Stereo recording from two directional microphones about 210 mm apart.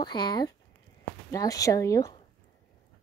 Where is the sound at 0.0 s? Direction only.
20° left (ahead or behind).